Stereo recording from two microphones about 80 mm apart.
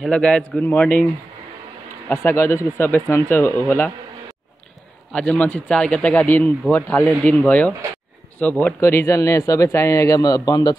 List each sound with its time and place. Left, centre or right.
0.1 s a man's voice: centre
2.0 s speech: left
5.1 s a man's voice: centre
8.8 s a man's voice: left